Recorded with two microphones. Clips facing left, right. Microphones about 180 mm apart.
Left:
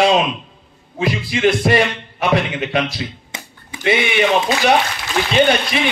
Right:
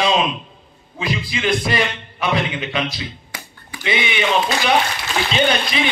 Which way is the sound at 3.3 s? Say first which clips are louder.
Left 2 dB; 25° left (ahead or behind).